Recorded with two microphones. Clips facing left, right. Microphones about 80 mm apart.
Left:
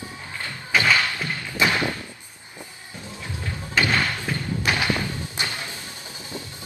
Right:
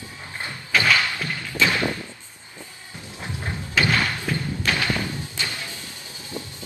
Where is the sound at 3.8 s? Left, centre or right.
Centre.